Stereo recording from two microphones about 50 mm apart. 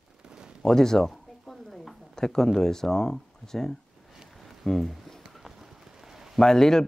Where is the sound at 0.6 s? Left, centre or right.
Centre.